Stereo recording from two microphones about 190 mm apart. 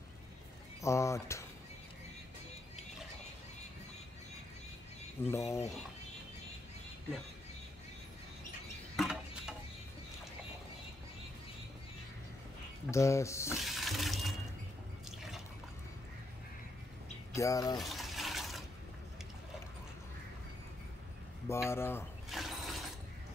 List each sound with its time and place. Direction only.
0.8 s speech: 15° left (ahead or behind)
5.2 s speech: 15° left (ahead or behind)
8.9 s a sound: 5° right (ahead or behind)
12.9 s speech: 15° left (ahead or behind)
13.6 s a sound: centre (ahead or behind)
17.3 s speech: 15° left (ahead or behind)
17.7 s water: centre (ahead or behind)
21.5 s speech: 15° left (ahead or behind)
22.3 s mechanisms: centre (ahead or behind)